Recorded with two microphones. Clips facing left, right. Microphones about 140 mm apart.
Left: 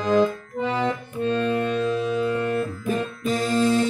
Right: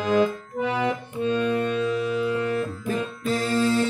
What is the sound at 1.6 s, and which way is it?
Music, 5° right (ahead or behind).